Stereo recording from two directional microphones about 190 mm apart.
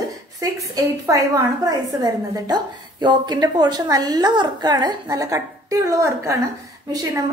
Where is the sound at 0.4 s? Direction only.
15° right (ahead or behind).